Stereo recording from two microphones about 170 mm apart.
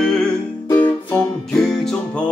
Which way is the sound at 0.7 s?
15° left (ahead or behind).